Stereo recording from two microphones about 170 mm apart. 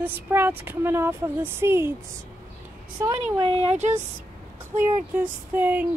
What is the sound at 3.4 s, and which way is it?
Speech, 35° right (ahead or behind).